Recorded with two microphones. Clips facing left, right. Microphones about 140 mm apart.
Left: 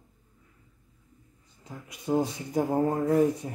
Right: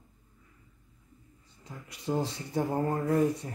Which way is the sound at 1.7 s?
15° left (ahead or behind).